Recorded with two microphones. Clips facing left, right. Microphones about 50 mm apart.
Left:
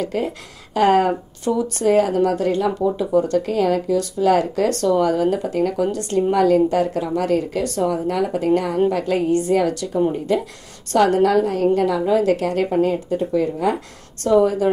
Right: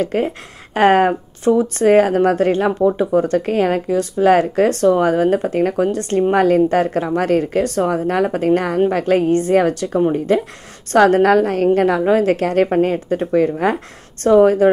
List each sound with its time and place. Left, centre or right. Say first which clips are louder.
0.0 s a woman's voice: right 4 dB; right